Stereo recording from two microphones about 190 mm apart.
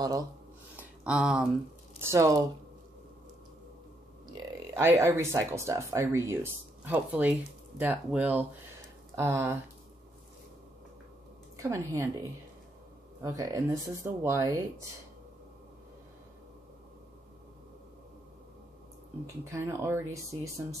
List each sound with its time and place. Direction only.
0.0 s speech: 20° right (ahead or behind)
0.7 s a sound: 5° right (ahead or behind)
2.0 s speech: 15° right (ahead or behind)
4.3 s speech: 15° right (ahead or behind)
11.5 s speech: 15° right (ahead or behind)
19.2 s speech: 15° right (ahead or behind)